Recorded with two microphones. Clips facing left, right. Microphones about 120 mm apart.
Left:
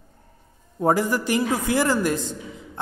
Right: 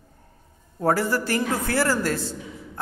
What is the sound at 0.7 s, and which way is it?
A woman's voice, 15° left (ahead or behind).